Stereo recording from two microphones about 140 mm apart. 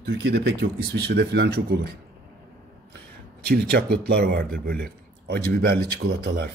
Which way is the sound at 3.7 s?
90° right.